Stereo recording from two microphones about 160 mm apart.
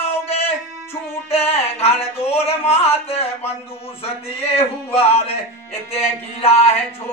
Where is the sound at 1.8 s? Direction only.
40° left (ahead or behind).